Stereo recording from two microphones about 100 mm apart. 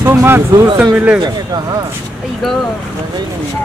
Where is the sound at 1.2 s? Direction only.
45° right (ahead or behind).